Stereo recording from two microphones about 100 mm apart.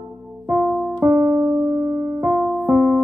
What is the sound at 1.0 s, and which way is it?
Keyboard, 20° right (ahead or behind).